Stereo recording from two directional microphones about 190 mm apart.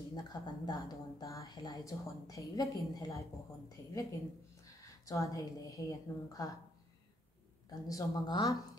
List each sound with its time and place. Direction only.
0.1 s a woman's voice: 20° left (ahead or behind)
5.0 s a woman's voice: 15° left (ahead or behind)
7.7 s a woman's voice: 20° left (ahead or behind)